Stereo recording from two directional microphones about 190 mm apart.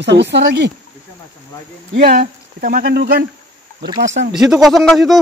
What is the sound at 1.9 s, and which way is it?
Speech, 50° right (ahead or behind).